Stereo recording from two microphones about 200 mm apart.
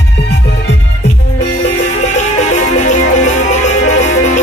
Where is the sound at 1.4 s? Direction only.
35° left (ahead or behind).